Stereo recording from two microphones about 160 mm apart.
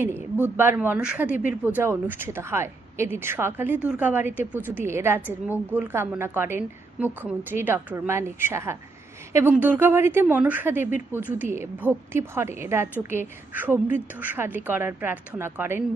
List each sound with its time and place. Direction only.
0.0 s speech: 15° right (ahead or behind)